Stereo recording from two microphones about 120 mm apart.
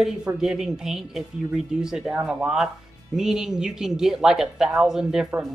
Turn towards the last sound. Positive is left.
turn(degrees=-5)  # may be behind; listen again after turning